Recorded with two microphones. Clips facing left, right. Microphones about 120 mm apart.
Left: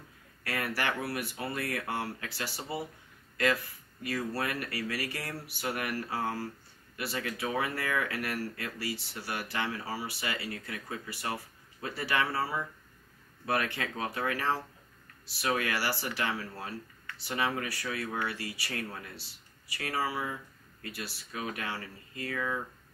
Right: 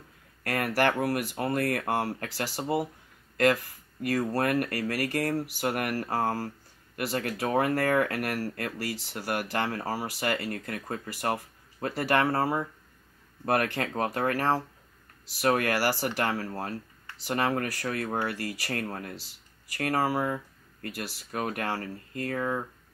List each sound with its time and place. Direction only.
0.4 s speech: 50° right (ahead or behind)
4.0 s speech: 45° right (ahead or behind)